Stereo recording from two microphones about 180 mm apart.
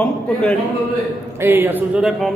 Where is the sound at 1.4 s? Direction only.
10° right (ahead or behind).